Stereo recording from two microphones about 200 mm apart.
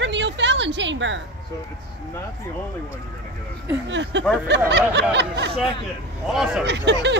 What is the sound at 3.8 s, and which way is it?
Snicker, 65° right (ahead or behind).